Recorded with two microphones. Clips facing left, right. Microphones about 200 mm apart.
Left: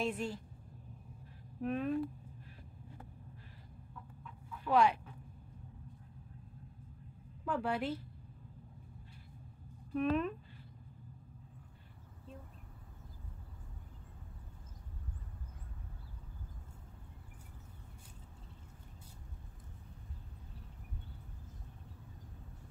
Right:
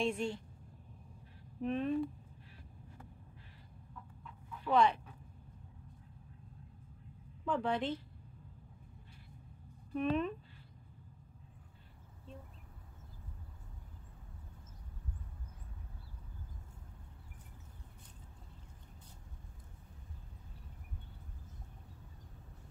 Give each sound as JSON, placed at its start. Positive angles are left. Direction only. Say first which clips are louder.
{"t": 0.0, "sound": "speech", "louder": "right 2 dB", "side_deg": 5}
{"t": 1.6, "sound": "speech", "louder": "right 1 dB", "side_deg": 5}
{"t": 4.2, "sound": "dog", "louder": "even", "side_deg": 10}
{"t": 7.4, "sound": "speech", "louder": "right 1 dB", "side_deg": 10}
{"t": 9.9, "sound": "speech", "louder": "left 1 dB", "side_deg": 0}